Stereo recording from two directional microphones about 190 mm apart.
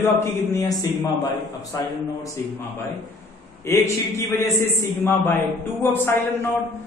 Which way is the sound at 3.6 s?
15° left (ahead or behind).